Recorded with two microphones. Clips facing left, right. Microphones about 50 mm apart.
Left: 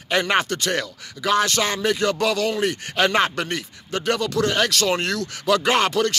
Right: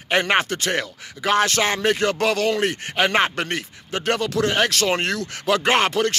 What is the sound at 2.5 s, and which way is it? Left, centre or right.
Speech, right.